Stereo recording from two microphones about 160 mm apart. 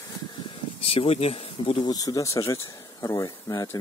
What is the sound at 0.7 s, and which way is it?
Speech, 40° left (ahead or behind).